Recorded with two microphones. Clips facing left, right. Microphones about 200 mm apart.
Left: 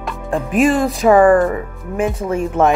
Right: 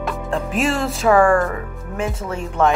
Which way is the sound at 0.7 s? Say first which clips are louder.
Left 1 dB; 15° left (ahead or behind).